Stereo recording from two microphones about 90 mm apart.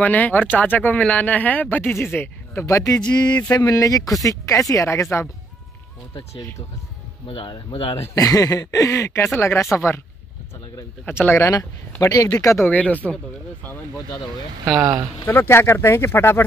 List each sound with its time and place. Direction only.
0.0 s speech: 20° left (ahead or behind)
2.8 s speech: 45° left (ahead or behind)
3.7 s speech: 40° left (ahead or behind)
7.2 s speech: 60° left (ahead or behind); by 8.1 s 75° left (ahead or behind)
8.1 s speech: 40° left (ahead or behind)
11.3 s speech: 35° left (ahead or behind)
12.6 s speech: 15° left (ahead or behind)
14.8 s speech: 40° right (ahead or behind)
15.2 s speech: 25° left (ahead or behind)